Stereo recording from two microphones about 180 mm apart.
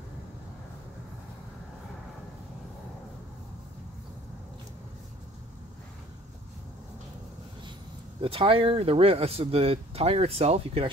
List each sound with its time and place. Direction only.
8.2 s speech: 30° right (ahead or behind)